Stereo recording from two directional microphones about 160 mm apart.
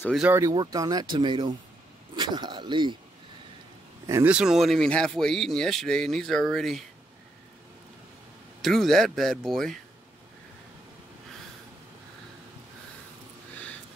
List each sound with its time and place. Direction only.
0.3 s speech: 20° right (ahead or behind)
4.1 s speech: 10° right (ahead or behind)
8.6 s speech: centre (ahead or behind)